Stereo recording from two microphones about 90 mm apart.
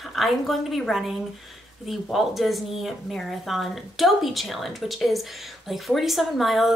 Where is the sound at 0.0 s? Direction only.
Centre (ahead or behind).